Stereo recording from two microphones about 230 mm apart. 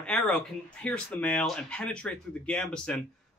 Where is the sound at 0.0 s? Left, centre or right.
Centre.